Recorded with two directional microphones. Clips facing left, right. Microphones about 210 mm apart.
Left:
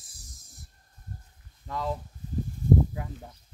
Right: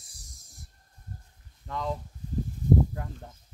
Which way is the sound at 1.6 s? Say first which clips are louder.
Left 1 dB; 5° left (ahead or behind).